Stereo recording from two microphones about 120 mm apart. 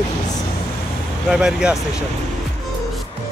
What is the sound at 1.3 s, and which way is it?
Speech, 5° right (ahead or behind).